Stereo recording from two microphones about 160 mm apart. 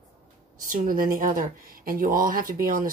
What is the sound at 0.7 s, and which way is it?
Speech, 60° right (ahead or behind).